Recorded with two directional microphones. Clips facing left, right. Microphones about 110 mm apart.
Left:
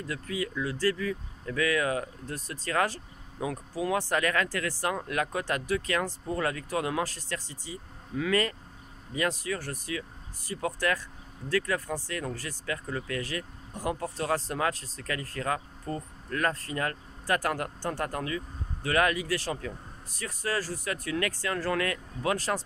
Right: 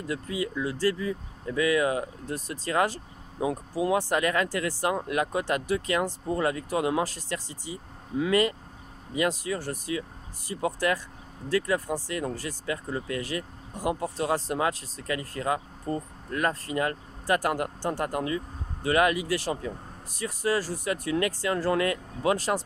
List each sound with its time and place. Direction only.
0.0 s speech: 20° right (ahead or behind)